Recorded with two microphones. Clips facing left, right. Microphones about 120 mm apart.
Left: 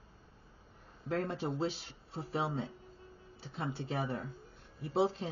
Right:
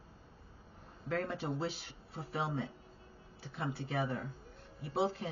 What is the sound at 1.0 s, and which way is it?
Speech, 20° left (ahead or behind).